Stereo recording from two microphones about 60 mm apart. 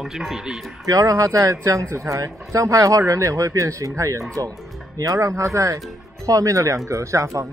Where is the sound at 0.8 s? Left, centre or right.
Right.